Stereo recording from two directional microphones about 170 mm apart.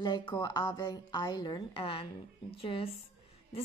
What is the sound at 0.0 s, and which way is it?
A woman's voice, 25° left (ahead or behind).